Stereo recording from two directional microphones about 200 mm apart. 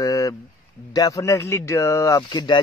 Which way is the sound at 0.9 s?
15° left (ahead or behind).